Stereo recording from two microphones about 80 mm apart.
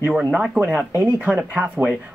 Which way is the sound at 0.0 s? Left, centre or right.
Centre.